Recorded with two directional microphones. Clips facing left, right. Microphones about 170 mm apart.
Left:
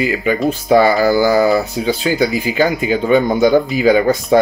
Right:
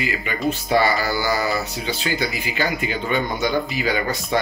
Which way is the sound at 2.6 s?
45° left (ahead or behind).